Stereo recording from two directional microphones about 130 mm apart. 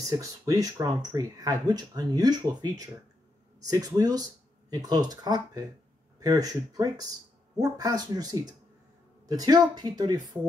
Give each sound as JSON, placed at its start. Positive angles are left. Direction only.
{"t": 0.0, "sound": "speech", "side_deg": -25}